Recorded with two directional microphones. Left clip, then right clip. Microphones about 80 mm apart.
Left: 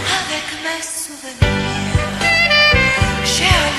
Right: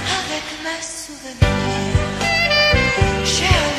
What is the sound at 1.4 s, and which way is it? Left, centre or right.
Music, right.